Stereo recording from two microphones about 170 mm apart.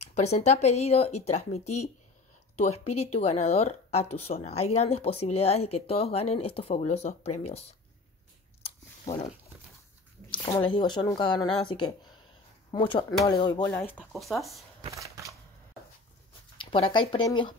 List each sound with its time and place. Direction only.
0.0 s speech: 40° left (ahead or behind)
8.6 s a sound: 45° left (ahead or behind)
10.6 s speech: 30° left (ahead or behind)
13.7 s speech: 10° left (ahead or behind)
14.1 s speech: centre (ahead or behind)
14.9 s a sound: 20° right (ahead or behind)
16.5 s speech: 30° left (ahead or behind)